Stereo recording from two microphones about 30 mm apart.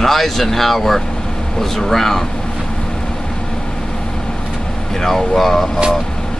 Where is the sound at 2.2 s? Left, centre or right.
Left.